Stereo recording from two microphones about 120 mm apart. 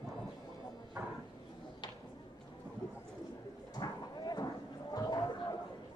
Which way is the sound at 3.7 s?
35° left (ahead or behind).